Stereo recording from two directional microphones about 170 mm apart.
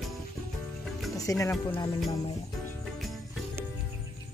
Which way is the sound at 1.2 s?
20° left (ahead or behind).